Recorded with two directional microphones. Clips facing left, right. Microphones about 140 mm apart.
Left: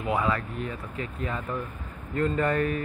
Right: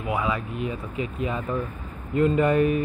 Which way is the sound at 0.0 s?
10° right (ahead or behind).